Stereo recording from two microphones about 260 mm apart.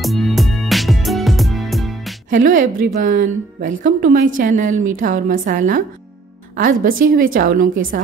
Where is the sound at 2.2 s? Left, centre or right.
Right.